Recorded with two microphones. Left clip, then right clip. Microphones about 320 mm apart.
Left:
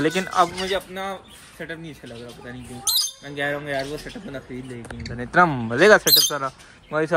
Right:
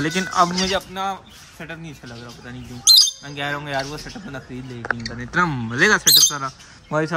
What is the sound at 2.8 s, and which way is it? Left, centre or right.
Bird, right.